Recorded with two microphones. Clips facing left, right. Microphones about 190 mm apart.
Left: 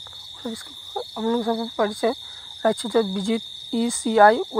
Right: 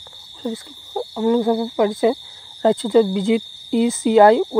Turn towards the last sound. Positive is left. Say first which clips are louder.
# right 4 dB
turn(degrees=-20)  # may be behind; listen again after turning